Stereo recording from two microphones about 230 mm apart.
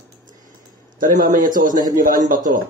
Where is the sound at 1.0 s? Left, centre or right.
Right.